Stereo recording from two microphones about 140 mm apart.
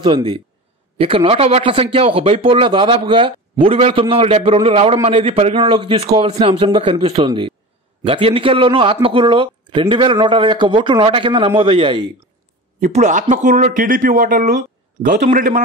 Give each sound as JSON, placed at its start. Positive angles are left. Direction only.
{"t": 0.0, "sound": "a man's voice", "side_deg": -40}
{"t": 12.8, "sound": "speech", "side_deg": -60}